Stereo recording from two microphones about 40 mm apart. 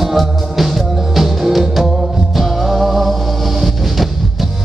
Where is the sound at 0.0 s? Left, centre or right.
Centre.